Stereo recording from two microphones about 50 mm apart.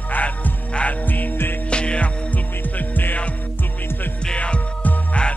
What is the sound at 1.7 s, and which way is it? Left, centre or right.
Music, left.